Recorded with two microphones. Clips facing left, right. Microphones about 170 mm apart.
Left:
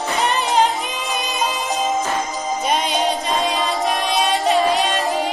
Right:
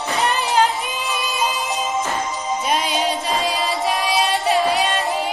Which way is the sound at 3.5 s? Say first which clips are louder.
Left 1 dB; 50° left (ahead or behind).